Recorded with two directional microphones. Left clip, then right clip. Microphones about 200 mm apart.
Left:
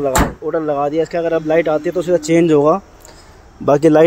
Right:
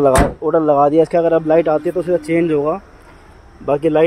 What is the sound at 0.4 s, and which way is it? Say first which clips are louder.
Speech: right 5 dB; 20° right (ahead or behind).